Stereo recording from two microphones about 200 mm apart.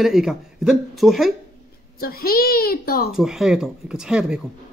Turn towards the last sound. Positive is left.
turn(degrees=-5)  # may be behind; listen again after turning